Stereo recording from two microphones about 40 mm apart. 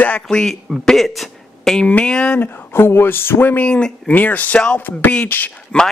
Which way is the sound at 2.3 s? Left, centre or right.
Left.